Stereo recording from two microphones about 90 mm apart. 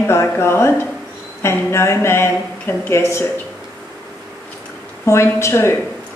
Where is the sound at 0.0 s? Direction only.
30° left (ahead or behind).